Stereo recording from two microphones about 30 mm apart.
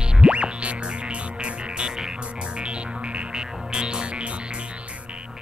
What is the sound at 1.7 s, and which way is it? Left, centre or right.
Music, right.